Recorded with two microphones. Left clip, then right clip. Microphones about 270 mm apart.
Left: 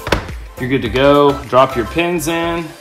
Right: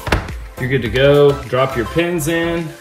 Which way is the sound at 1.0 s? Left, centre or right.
Left.